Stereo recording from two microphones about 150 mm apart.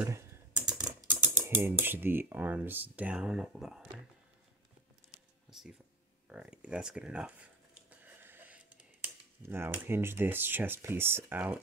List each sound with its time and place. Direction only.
0.0 s typing: 15° right (ahead or behind)
1.0 s speech: 15° right (ahead or behind)
5.5 s speech: 5° right (ahead or behind)